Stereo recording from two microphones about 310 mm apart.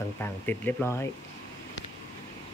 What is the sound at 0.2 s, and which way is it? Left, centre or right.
Speech, centre.